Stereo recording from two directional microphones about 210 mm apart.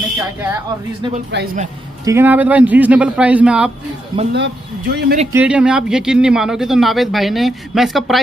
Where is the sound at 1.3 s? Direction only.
50° right (ahead or behind).